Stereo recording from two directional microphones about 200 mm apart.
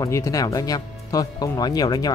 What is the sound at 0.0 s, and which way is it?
Speech, 15° left (ahead or behind).